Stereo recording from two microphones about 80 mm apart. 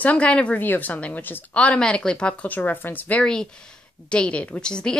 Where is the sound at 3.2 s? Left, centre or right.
Centre.